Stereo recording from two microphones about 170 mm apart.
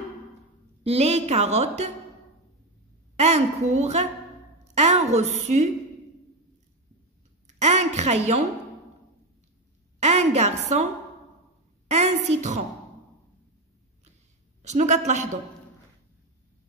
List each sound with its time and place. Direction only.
0.8 s a woman's voice: 35° right (ahead or behind)
3.2 s a woman's voice: 40° right (ahead or behind)
7.4 s a sound: 40° right (ahead or behind)
10.0 s a woman's voice: 40° right (ahead or behind)
11.9 s a woman's voice: 40° right (ahead or behind)
14.6 s a woman's voice: 45° right (ahead or behind)